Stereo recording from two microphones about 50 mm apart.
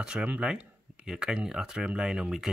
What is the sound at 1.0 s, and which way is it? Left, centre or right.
Speech, centre.